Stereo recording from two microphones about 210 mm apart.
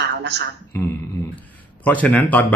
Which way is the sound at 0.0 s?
55° right (ahead or behind).